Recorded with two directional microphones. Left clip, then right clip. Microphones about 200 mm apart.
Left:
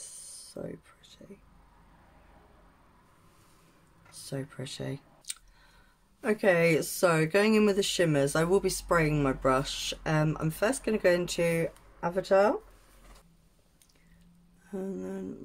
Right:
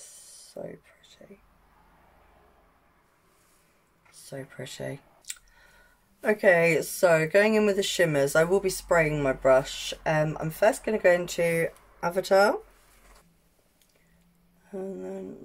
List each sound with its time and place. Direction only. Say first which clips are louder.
0.0 s a sound: left 2 dB; 10° left (ahead or behind)
4.1 s clicking: left 1 dB; 10° left (ahead or behind)
6.2 s speech: right 4 dB; 5° left (ahead or behind)
14.7 s speech: right 2 dB; 15° left (ahead or behind)